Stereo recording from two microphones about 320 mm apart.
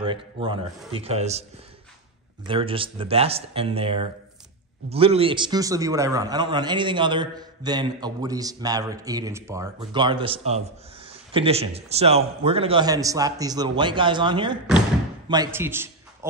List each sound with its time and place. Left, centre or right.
0.0 s a man's voice: centre
2.4 s a man's voice: centre